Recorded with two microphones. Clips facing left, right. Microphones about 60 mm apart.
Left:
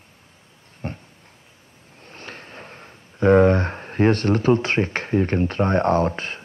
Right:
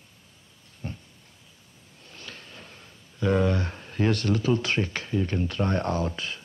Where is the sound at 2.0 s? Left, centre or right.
Left.